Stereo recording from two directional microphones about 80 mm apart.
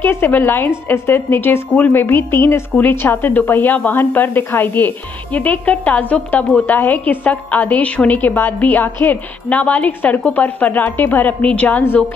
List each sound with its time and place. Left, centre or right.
0.0 s a woman's voice: left